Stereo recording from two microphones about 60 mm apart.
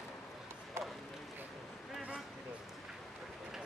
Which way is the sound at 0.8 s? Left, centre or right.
Right.